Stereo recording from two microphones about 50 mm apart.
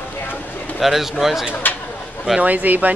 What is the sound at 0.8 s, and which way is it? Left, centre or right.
Speech, centre.